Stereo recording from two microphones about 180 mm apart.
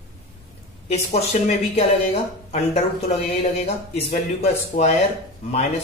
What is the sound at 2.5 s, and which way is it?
Speech, 35° left (ahead or behind).